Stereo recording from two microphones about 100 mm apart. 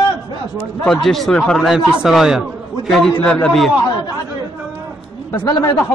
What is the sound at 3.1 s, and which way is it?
Speech, 15° left (ahead or behind).